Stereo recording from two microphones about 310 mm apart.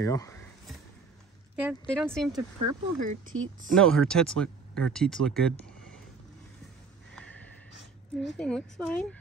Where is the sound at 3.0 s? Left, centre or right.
Right.